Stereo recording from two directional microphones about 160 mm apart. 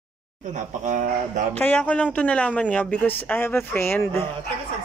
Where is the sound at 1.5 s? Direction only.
10° left (ahead or behind).